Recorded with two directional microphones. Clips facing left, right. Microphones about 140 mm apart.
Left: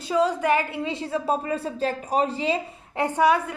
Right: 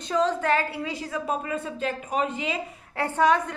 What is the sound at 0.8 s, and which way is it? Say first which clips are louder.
A man's voice: left 4 dB; 30° left (ahead or behind).